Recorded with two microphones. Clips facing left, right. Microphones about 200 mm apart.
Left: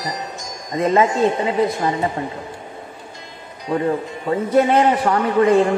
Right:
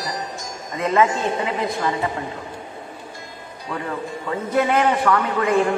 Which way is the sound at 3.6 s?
25° left (ahead or behind).